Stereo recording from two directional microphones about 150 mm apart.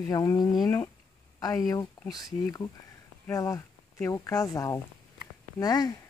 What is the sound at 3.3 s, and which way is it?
Speech, 20° left (ahead or behind).